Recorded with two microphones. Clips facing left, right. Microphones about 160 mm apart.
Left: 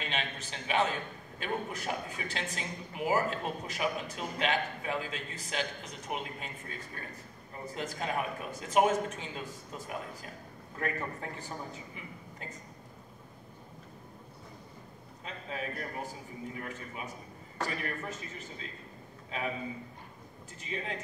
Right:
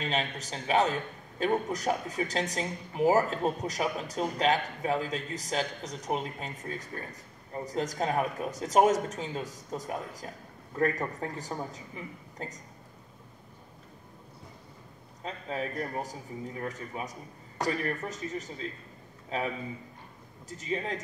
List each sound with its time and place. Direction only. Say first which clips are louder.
0.0 s speech: right 5 dB; 40° right (ahead or behind)
7.6 s speech: right 6 dB; 40° right (ahead or behind)
15.2 s speech: right 4 dB; 40° right (ahead or behind)